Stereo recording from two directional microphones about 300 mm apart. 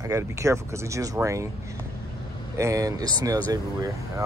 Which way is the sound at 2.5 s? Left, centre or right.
Centre.